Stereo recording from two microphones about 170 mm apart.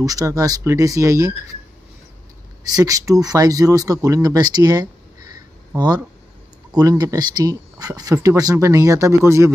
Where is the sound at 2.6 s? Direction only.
20° right (ahead or behind).